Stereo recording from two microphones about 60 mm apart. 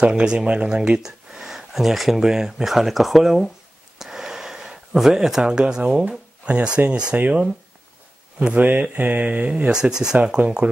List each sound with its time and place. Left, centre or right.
0.0 s speech: centre
4.0 s gasp: centre
6.9 s speech: centre
7.2 s mantra: right
9.5 s speech: centre
10.1 s mantra: right